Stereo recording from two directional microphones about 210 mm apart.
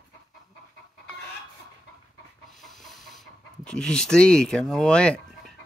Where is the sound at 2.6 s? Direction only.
Centre (ahead or behind).